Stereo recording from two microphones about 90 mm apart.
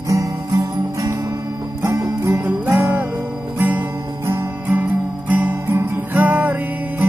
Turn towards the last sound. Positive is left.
turn(degrees=-20)  # may be behind; listen again after turning